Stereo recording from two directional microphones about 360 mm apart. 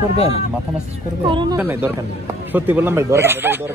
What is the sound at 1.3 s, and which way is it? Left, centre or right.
Speech, centre.